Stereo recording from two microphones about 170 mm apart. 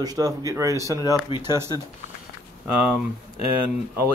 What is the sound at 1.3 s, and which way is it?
Speech, 30° left (ahead or behind).